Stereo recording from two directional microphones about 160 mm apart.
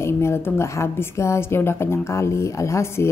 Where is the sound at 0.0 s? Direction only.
15° left (ahead or behind).